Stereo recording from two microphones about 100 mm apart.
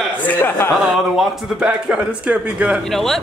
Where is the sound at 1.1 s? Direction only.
10° right (ahead or behind).